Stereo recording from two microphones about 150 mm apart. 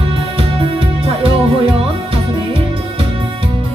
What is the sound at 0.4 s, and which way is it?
Music, 40° right (ahead or behind).